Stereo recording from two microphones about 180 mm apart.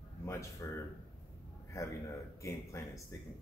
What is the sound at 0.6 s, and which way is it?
Speech, 15° left (ahead or behind).